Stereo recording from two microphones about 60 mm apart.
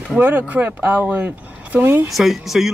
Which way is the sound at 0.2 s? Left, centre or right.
Right.